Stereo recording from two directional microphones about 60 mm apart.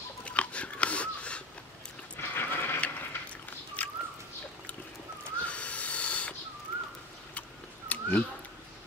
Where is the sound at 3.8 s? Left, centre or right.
Left.